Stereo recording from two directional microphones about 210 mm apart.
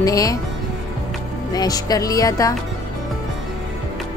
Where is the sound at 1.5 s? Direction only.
20° left (ahead or behind).